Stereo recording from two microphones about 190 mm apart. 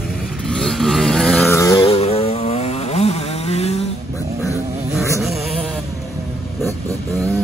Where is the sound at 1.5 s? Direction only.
15° left (ahead or behind).